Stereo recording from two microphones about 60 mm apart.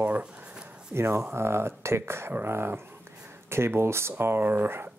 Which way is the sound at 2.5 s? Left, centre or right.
Right.